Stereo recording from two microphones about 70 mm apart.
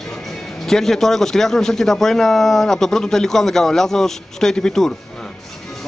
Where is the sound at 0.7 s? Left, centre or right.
Centre.